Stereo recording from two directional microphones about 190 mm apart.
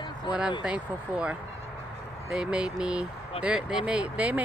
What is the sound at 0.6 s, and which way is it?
Speech, 5° right (ahead or behind).